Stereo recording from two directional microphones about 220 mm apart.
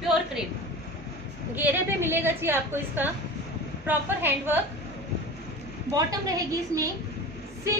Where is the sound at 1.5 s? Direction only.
10° right (ahead or behind).